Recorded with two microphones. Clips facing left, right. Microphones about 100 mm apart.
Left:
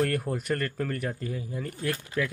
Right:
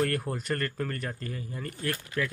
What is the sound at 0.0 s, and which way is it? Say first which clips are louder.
Speech: left 2 dB; centre (ahead or behind).